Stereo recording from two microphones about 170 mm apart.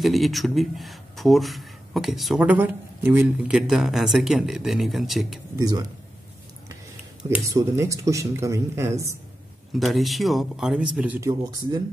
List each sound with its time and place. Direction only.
0.0 s speech: centre (ahead or behind)
3.5 s speech: centre (ahead or behind)
5.6 s a man's voice: 20° right (ahead or behind)
7.2 s speech: 15° right (ahead or behind)
9.7 s speech: centre (ahead or behind); by 11.8 s 25° right (ahead or behind)